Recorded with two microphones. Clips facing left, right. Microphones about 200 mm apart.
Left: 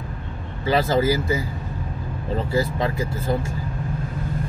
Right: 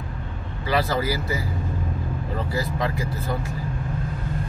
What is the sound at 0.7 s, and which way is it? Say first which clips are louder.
Speech: left 4 dB; 25° left (ahead or behind).